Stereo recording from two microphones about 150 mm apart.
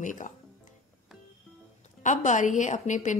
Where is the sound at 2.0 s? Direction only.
55° left (ahead or behind).